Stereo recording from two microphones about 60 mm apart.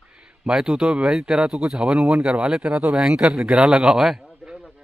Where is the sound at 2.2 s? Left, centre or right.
Right.